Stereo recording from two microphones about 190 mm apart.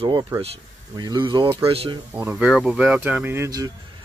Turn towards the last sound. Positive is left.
turn(degrees=-20)  # may be behind; listen again after turning